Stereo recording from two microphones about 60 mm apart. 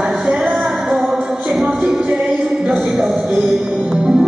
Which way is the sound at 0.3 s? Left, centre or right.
Centre.